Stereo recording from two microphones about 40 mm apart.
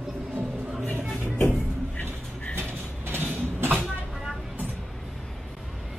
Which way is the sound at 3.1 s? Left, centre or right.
Right.